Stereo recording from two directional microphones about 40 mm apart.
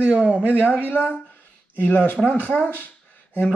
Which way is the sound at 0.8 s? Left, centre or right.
Left.